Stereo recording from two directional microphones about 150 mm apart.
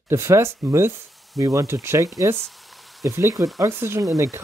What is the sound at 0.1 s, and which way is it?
Speech, 20° right (ahead or behind).